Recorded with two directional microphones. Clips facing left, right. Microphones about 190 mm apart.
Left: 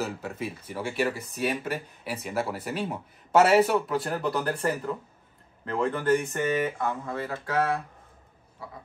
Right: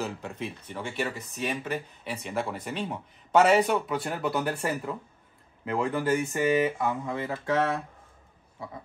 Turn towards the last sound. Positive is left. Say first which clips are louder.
# even
turn(degrees=-20)  # may be behind; listen again after turning